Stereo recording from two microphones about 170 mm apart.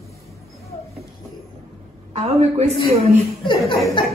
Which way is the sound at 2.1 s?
40° right (ahead or behind).